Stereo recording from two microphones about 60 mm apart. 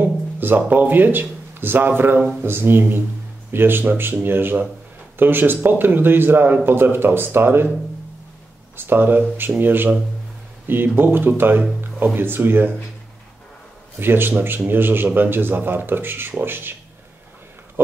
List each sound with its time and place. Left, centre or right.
0.0 s a man's voice: right
8.7 s a man's voice: right
13.9 s a man's voice: right
17.8 s speech: right